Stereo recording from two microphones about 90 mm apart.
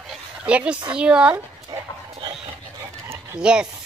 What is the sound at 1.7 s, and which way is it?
Dog, 50° right (ahead or behind).